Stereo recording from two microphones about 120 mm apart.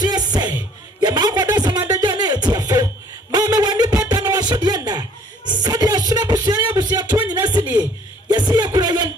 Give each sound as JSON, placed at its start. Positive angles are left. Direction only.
{"t": 0.0, "sound": "music", "side_deg": -35}
{"t": 8.3, "sound": "music", "side_deg": -35}